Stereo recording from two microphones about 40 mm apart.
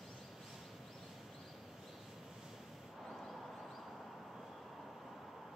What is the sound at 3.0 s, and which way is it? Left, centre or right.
Vehicle, centre.